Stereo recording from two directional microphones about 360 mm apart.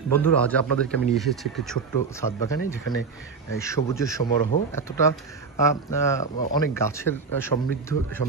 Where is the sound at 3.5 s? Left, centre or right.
Centre.